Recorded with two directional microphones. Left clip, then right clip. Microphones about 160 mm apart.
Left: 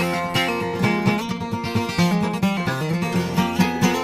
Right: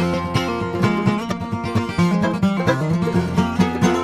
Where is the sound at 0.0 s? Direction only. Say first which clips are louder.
Left 1 dB; 25° left (ahead or behind).